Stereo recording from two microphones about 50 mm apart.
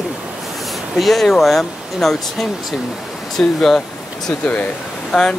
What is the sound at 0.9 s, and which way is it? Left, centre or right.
Speech, centre.